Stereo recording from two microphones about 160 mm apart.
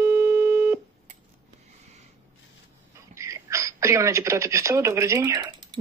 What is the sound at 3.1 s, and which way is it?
A woman's voice, 20° right (ahead or behind).